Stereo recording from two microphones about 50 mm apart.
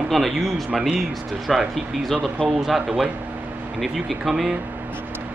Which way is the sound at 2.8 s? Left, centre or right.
Centre.